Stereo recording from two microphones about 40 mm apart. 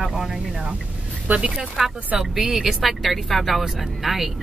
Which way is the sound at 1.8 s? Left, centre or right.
Centre.